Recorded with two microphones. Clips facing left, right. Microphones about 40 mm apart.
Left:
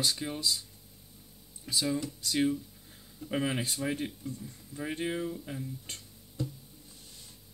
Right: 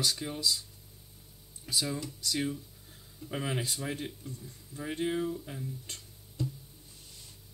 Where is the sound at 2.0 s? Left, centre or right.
Left.